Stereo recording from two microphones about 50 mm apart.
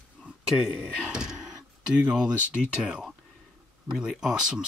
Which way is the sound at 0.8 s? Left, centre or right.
Centre.